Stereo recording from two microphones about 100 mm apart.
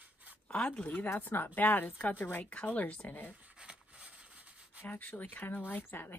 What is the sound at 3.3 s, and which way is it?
Rub, 10° right (ahead or behind).